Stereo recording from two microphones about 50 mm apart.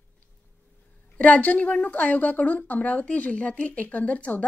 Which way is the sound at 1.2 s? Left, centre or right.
Left.